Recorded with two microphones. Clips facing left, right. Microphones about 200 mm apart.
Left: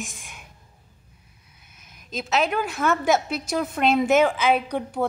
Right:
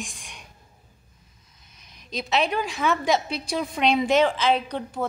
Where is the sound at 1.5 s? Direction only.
10° left (ahead or behind).